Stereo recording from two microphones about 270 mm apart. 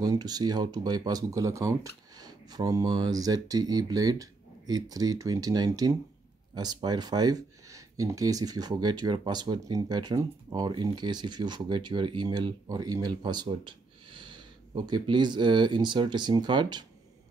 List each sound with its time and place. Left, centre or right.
0.0 s speech: centre